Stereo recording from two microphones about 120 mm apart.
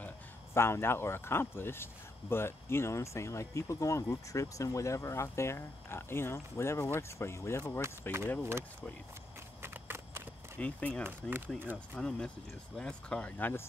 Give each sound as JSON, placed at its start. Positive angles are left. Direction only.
{"t": 0.6, "sound": "speech", "side_deg": 20}
{"t": 9.6, "sound": "a sound", "side_deg": -20}
{"t": 10.6, "sound": "speech", "side_deg": 10}
{"t": 11.1, "sound": "speech", "side_deg": -15}
{"t": 11.7, "sound": "speech", "side_deg": 10}